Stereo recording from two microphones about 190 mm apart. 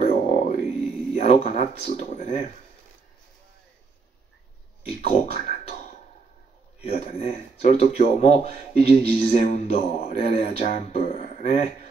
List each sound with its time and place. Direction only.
0.0 s a sound: 40° left (ahead or behind)
1.1 s a man's voice: 35° left (ahead or behind)
5.0 s speech: 35° left (ahead or behind)
6.8 s speech: 35° left (ahead or behind)